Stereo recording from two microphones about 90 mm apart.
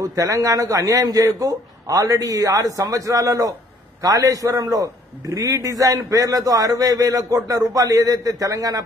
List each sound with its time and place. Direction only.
0.0 s a man's voice: 40° right (ahead or behind)